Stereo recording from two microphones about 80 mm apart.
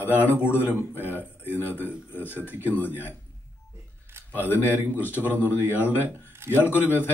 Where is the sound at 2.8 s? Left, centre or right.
Left.